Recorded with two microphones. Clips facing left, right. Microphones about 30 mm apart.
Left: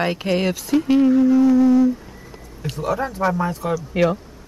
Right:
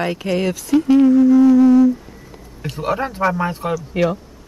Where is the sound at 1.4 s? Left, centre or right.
Centre.